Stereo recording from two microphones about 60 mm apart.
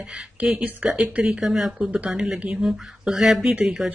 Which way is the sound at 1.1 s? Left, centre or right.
Right.